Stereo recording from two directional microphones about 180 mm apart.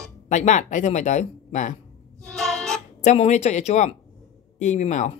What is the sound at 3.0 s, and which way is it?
Speech, 40° left (ahead or behind).